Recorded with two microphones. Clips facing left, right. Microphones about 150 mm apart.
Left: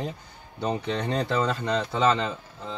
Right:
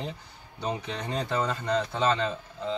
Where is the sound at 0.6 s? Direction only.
70° left (ahead or behind); by 2.0 s 90° left.